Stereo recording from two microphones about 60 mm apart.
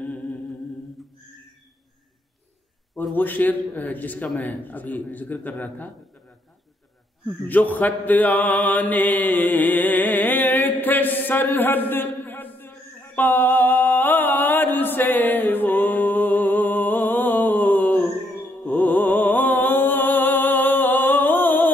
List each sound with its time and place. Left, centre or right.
0.0 s humming: centre
3.0 s a man's voice: left
7.4 s mantra: left
18.7 s music: left